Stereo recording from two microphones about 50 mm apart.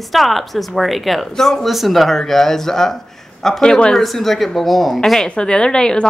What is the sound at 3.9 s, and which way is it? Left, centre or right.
A woman's voice, centre.